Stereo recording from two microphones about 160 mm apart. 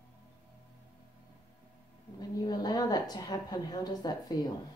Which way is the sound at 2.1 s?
25° left (ahead or behind).